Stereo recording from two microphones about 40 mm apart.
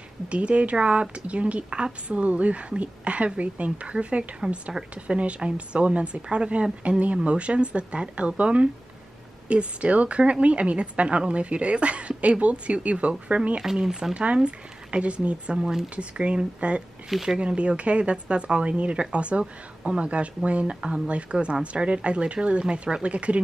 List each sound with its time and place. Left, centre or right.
0.3 s a woman's voice: right
13.8 s speech: centre
14.1 s speech: right
17.1 s speech: centre
17.4 s speech: right